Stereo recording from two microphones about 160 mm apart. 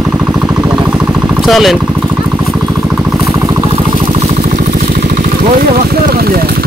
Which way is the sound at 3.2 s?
20° right (ahead or behind).